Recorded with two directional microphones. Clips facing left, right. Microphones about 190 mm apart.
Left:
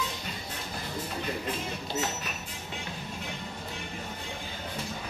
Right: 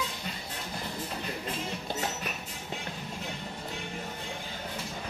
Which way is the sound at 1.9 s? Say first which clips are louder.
Left 3 dB; 55° right (ahead or behind).